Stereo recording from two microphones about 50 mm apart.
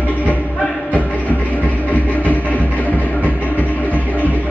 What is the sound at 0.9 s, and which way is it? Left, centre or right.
Music, left.